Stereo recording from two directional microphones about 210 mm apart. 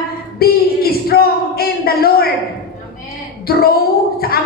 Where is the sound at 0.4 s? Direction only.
45° left (ahead or behind).